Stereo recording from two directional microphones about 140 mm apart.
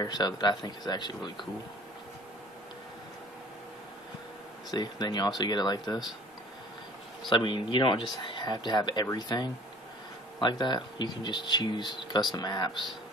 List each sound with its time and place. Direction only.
0.0 s speech: 30° left (ahead or behind)
4.6 s speech: 30° left (ahead or behind)
7.2 s speech: 35° left (ahead or behind)